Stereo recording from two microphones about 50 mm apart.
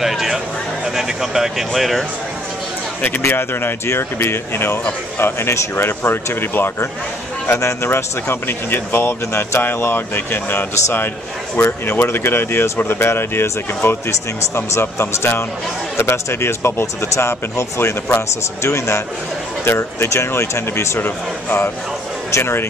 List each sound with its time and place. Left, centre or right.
0.0 s a sound: centre
0.8 s speech: centre
3.3 s speech: left
7.6 s speech: left
16.8 s speech: left
19.6 s speech: left
21.0 s speech: left